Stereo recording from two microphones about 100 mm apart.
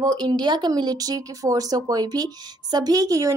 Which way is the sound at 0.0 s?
40° right (ahead or behind).